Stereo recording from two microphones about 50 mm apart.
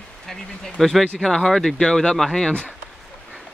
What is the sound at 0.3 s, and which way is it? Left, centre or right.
Speech, centre.